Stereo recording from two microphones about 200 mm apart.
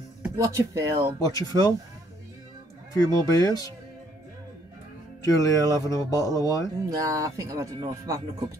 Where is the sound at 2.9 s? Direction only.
15° left (ahead or behind).